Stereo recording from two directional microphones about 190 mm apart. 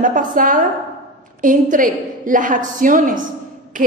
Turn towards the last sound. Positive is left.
turn(degrees=-45)  # may be behind; listen again after turning